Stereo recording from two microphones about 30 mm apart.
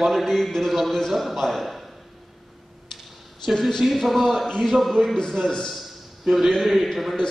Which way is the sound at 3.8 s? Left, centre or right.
Centre.